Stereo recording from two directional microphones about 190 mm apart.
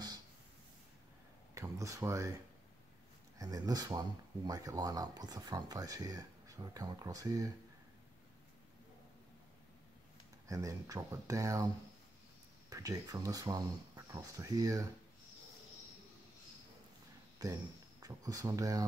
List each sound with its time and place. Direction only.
1.5 s speech: 15° right (ahead or behind)
3.3 s speech: 20° right (ahead or behind)
10.5 s speech: 15° right (ahead or behind)
17.4 s speech: 20° right (ahead or behind)